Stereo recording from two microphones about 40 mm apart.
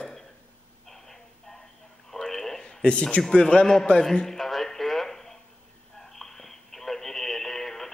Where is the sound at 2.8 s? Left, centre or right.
Left.